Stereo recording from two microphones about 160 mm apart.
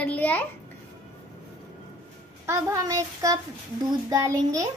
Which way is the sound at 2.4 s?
15° right (ahead or behind).